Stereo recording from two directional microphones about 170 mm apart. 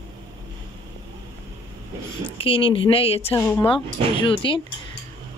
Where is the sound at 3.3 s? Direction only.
15° left (ahead or behind).